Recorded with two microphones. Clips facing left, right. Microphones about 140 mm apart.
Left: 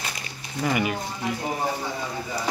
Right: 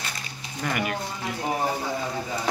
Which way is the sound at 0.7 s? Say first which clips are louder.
Left 3 dB; 5° left (ahead or behind).